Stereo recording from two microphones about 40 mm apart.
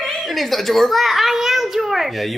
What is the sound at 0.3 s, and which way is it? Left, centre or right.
A child's voice, centre.